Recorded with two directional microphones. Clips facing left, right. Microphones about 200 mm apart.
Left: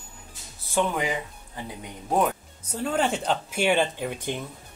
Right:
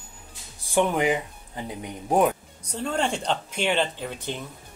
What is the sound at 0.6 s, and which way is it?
Speech, 15° right (ahead or behind).